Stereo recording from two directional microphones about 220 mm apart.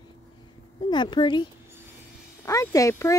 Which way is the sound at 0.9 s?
20° left (ahead or behind).